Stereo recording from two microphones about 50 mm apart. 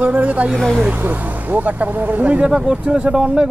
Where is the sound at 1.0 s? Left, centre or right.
Right; by 3.5 s centre.